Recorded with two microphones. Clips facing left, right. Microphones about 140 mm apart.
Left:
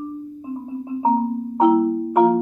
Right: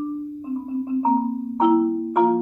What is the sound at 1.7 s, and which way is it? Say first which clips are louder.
Marimba: left 1 dB; 15° left (ahead or behind).